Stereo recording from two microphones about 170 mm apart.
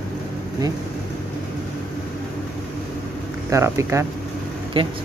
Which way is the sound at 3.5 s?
15° right (ahead or behind).